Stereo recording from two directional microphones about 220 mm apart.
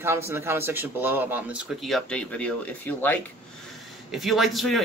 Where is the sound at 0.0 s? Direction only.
10° right (ahead or behind).